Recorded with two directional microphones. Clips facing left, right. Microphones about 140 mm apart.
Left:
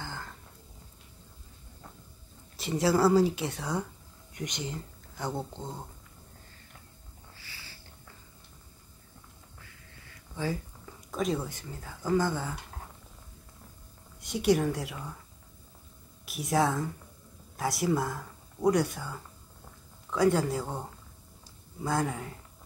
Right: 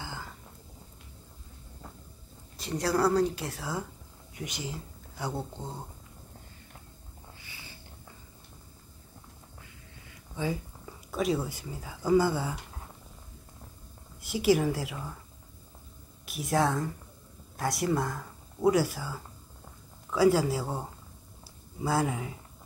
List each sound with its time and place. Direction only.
0.0 s a sound: 10° right (ahead or behind)
2.5 s speech: centre (ahead or behind)
7.3 s a sound: 20° right (ahead or behind)
10.3 s speech: 15° right (ahead or behind)
11.1 s speech: 5° right (ahead or behind)
14.2 s speech: 5° right (ahead or behind)
16.3 s speech: centre (ahead or behind)
21.8 s speech: 5° right (ahead or behind)